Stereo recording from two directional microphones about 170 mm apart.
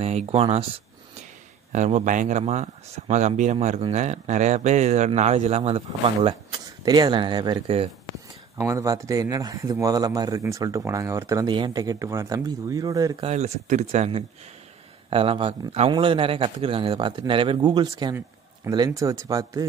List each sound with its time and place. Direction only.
0.0 s speech: 40° right (ahead or behind)
1.7 s speech: 45° right (ahead or behind)
8.5 s speech: 20° right (ahead or behind)
13.2 s speech: 40° right (ahead or behind); by 19.6 s 20° right (ahead or behind)